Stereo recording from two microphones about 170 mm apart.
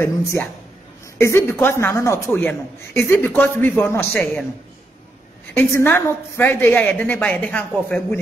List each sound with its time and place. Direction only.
0.0 s speech: 15° left (ahead or behind)
5.5 s speech: 15° left (ahead or behind)